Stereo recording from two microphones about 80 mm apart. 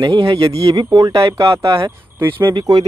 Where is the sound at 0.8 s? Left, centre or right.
Right.